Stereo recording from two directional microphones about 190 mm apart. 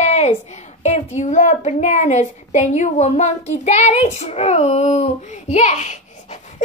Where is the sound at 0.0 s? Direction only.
35° left (ahead or behind).